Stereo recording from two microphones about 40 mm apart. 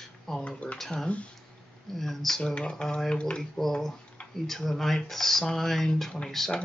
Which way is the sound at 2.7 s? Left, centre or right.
Centre.